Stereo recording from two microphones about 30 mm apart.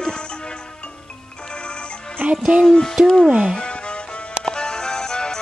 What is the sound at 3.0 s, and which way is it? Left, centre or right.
Speech, right.